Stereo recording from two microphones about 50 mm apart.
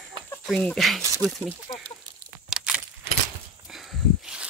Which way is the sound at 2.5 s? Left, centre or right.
Centre.